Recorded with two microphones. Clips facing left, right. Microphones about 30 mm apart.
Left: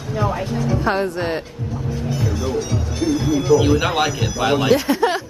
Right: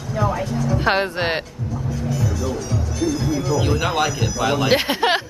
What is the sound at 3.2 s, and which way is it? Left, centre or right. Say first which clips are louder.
Speech: left 3 dB; left.